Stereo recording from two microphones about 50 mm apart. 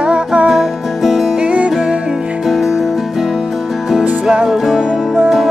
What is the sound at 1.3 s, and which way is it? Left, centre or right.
Music, right.